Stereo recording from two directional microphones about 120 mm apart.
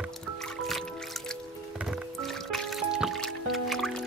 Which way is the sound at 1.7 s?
5° right (ahead or behind).